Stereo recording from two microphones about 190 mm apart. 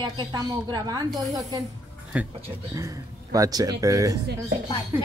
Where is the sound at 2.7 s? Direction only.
15° right (ahead or behind).